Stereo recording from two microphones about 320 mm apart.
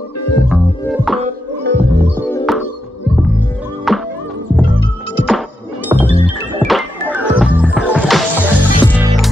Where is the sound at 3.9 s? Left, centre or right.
Centre.